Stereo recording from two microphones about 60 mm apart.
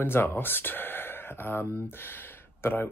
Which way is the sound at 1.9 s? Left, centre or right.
Left.